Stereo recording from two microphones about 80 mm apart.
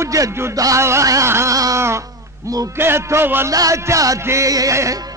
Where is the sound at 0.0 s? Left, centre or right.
Right.